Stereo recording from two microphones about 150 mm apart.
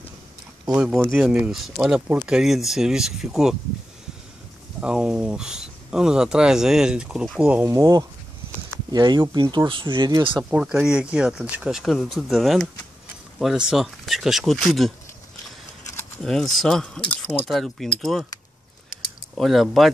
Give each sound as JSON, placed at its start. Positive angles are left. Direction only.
{"t": 0.7, "sound": "speech", "side_deg": -5}
{"t": 4.7, "sound": "speech", "side_deg": -5}
{"t": 7.7, "sound": "speech", "side_deg": -25}
{"t": 10.3, "sound": "speech", "side_deg": -5}
{"t": 16.3, "sound": "speech", "side_deg": 0}
{"t": 19.3, "sound": "speech", "side_deg": 0}